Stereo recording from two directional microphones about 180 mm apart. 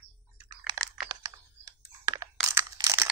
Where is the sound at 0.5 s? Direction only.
20° right (ahead or behind).